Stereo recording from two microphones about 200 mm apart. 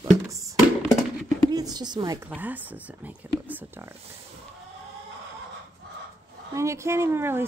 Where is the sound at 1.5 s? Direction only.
20° right (ahead or behind).